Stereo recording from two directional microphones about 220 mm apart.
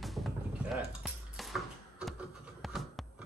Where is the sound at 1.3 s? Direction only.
Centre (ahead or behind).